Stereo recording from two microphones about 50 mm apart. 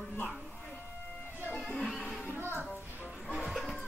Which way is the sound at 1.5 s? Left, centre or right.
Left.